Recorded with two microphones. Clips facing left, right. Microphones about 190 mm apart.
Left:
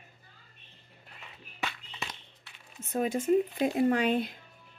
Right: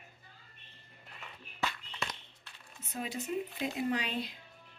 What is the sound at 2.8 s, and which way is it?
Speech, 50° left (ahead or behind).